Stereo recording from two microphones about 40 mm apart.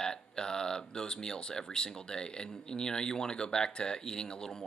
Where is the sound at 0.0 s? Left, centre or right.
Centre.